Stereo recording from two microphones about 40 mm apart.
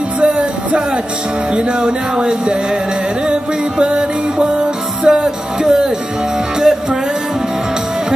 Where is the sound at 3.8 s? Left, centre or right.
Right.